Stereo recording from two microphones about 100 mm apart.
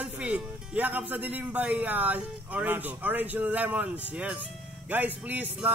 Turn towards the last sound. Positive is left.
turn(degrees=-15)  # may be behind; listen again after turning